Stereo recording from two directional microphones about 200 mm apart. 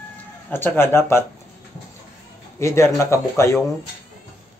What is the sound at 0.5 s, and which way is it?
Speech, 10° left (ahead or behind).